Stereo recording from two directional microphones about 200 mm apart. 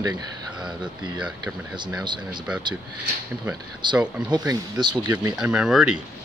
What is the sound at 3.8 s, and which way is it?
Speech, 20° right (ahead or behind).